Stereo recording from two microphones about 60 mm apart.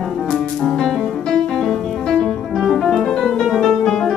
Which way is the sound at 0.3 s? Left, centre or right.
Centre.